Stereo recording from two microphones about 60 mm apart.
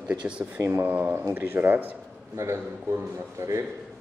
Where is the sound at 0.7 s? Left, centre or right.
Right.